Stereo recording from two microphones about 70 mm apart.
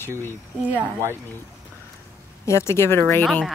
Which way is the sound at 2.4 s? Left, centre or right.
Left.